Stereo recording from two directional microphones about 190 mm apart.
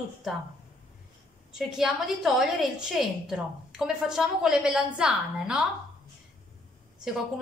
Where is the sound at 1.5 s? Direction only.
Centre (ahead or behind).